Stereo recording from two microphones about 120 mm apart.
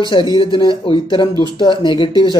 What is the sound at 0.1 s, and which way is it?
Speech, 45° left (ahead or behind).